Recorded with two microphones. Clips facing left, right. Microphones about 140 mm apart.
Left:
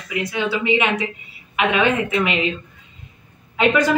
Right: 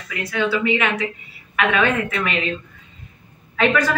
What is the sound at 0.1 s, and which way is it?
Speech, 15° left (ahead or behind).